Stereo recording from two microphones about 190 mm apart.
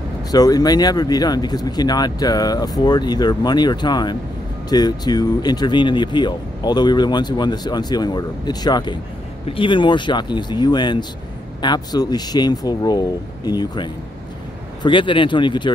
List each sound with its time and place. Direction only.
0.3 s speech: 20° left (ahead or behind)